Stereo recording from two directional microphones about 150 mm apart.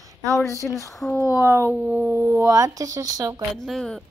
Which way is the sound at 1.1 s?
15° right (ahead or behind).